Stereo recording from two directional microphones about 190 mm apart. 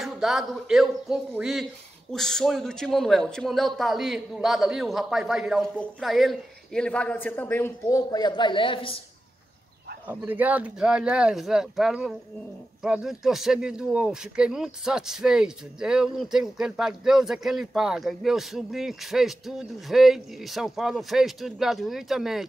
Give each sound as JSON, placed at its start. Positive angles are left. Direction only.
{"t": 0.0, "sound": "speech", "side_deg": 0}
{"t": 10.0, "sound": "speech", "side_deg": -10}